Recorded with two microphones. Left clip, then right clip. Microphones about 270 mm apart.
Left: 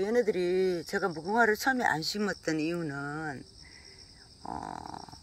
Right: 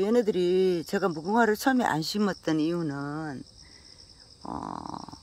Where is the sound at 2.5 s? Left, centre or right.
Centre.